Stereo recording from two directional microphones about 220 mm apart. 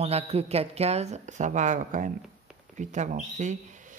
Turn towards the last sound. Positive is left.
turn(degrees=-35)  # may be behind; listen again after turning